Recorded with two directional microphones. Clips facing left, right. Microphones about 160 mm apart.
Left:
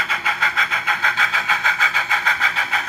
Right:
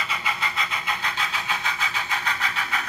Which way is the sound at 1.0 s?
90° left.